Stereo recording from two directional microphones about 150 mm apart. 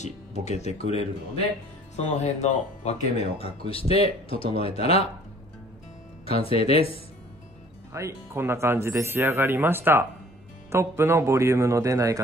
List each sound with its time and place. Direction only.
0.0 s speech: 50° left (ahead or behind)
6.2 s speech: 40° left (ahead or behind)
7.9 s a man's voice: 20° right (ahead or behind)